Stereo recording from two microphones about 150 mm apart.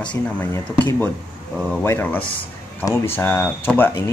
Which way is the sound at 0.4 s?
15° left (ahead or behind).